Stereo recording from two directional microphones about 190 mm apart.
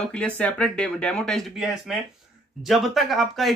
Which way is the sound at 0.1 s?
5° left (ahead or behind).